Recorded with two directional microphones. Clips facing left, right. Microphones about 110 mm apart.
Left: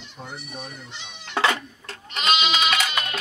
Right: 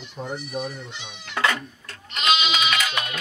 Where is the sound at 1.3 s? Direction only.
25° left (ahead or behind).